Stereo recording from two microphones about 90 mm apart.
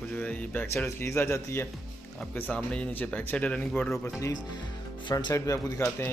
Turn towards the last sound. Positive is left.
turn(degrees=35)  # may be behind; listen again after turning